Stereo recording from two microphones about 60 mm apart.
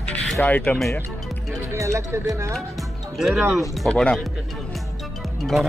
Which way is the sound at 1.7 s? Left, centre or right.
Right.